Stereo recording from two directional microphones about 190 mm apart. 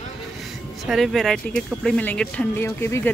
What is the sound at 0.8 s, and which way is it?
Speech, centre (ahead or behind).